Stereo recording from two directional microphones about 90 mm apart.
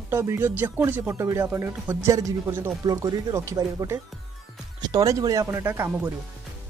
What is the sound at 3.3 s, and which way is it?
Speech, 35° right (ahead or behind).